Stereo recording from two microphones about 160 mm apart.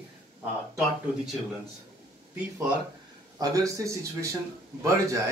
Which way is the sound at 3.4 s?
20° right (ahead or behind).